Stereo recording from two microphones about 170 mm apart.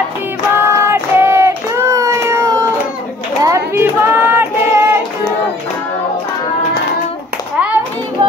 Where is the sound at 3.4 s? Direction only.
15° right (ahead or behind).